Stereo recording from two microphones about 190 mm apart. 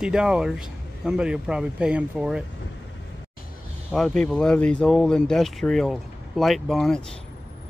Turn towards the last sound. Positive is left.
turn(degrees=0)  # may be behind; listen again after turning